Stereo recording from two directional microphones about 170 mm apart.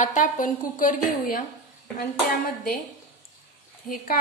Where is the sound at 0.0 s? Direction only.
50° left (ahead or behind).